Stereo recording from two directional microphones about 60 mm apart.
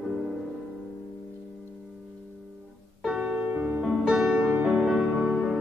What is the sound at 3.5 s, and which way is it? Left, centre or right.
Music, right.